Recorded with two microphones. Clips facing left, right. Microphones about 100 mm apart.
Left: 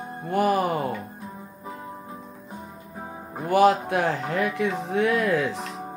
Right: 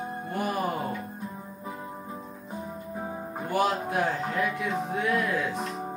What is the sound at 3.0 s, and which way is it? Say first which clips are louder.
Music: left 1 dB; centre (ahead or behind).